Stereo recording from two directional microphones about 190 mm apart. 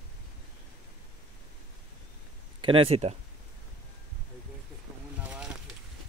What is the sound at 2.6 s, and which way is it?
Speech, 30° right (ahead or behind).